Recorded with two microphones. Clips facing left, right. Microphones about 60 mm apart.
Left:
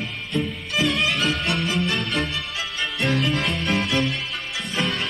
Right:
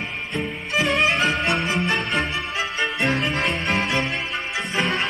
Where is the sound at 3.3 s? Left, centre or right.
Right.